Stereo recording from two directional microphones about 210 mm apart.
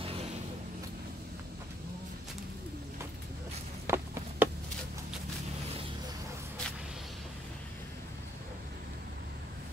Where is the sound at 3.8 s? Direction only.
10° right (ahead or behind).